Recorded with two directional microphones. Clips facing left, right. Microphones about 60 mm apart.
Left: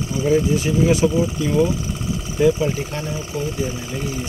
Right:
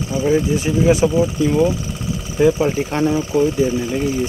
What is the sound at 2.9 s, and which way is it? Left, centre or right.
Speech, right.